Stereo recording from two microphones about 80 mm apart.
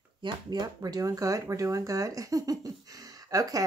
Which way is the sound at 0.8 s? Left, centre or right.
Right.